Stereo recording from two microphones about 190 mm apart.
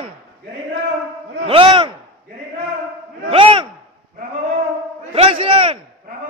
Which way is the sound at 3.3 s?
30° right (ahead or behind).